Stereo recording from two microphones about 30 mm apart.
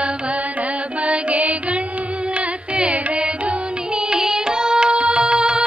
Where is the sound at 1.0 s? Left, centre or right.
Right.